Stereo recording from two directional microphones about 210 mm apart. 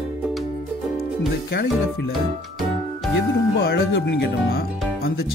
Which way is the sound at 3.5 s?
50° left (ahead or behind).